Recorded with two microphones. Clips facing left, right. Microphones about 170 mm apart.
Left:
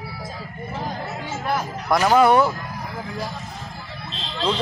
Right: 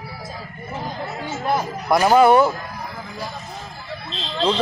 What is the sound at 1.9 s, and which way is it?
Speech, 15° right (ahead or behind).